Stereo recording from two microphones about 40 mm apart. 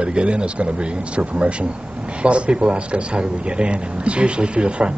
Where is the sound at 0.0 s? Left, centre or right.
Right.